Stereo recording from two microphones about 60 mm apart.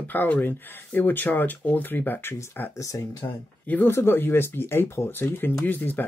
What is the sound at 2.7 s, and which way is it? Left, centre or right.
Speech, left.